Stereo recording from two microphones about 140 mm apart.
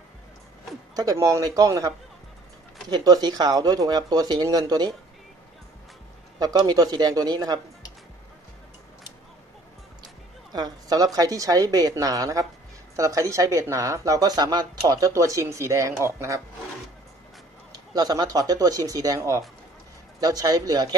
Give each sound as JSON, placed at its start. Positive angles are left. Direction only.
{"t": 0.9, "sound": "speech", "side_deg": -25}
{"t": 6.4, "sound": "speech", "side_deg": -30}
{"t": 10.5, "sound": "speech", "side_deg": -30}
{"t": 17.9, "sound": "speech", "side_deg": -30}